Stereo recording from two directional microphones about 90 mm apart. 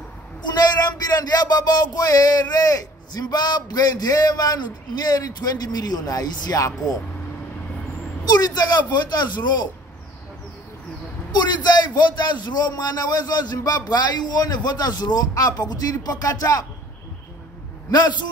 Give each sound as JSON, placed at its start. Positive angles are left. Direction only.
{"t": 0.5, "sound": "a sound", "side_deg": 45}
{"t": 2.5, "sound": "a man's voice", "side_deg": 40}
{"t": 8.3, "sound": "a man's voice", "side_deg": 50}
{"t": 11.3, "sound": "a man's voice", "side_deg": 50}
{"t": 17.9, "sound": "a man's voice", "side_deg": 50}